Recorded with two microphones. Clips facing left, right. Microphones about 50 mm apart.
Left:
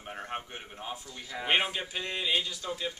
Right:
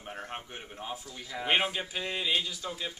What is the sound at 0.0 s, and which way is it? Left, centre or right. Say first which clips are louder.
A man's voice: left 2 dB; centre.